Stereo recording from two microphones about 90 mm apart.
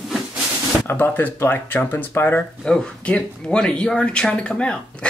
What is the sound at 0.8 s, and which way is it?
Speech, 25° left (ahead or behind).